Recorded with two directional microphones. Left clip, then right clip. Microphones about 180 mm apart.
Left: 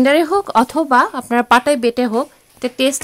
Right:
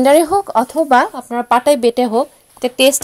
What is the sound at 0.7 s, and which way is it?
Speech, 25° left (ahead or behind).